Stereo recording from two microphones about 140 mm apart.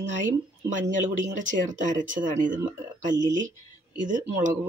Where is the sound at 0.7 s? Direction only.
65° right (ahead or behind).